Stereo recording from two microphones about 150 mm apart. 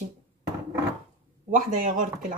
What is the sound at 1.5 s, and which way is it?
Speech, 60° right (ahead or behind).